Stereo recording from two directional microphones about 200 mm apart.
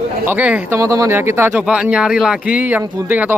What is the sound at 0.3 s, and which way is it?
Speech, 5° right (ahead or behind).